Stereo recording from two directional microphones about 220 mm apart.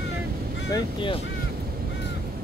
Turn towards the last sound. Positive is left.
turn(degrees=20)  # may be behind; listen again after turning